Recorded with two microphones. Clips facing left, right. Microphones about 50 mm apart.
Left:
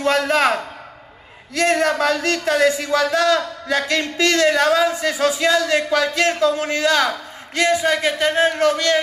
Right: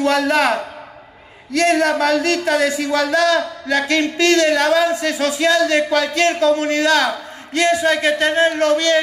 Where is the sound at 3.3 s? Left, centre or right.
Centre.